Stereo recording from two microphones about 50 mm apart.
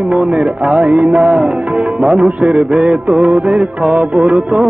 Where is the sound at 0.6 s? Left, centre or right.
Centre.